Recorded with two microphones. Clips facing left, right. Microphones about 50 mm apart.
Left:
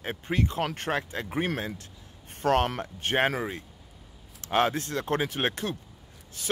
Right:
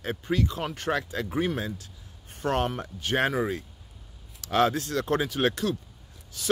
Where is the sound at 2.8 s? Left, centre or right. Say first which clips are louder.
Left 1 dB; left.